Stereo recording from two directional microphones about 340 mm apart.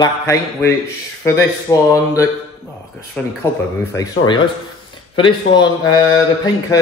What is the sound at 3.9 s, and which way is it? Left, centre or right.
A man's voice, centre.